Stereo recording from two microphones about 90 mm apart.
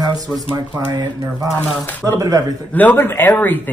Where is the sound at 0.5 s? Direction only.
40° right (ahead or behind).